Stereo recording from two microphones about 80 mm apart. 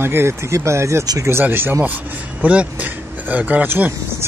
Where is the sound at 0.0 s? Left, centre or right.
Right.